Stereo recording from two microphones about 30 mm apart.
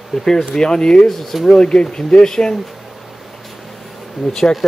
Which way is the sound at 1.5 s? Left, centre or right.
Left.